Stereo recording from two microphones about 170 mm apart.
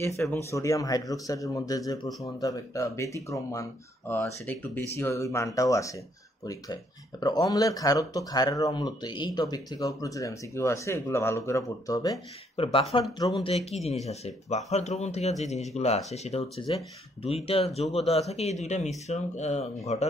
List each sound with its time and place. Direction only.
0.0 s speech: 15° left (ahead or behind)
12.6 s speech: 35° left (ahead or behind)